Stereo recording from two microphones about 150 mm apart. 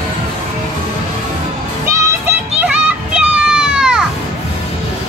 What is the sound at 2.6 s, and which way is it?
Children playing, 10° right (ahead or behind).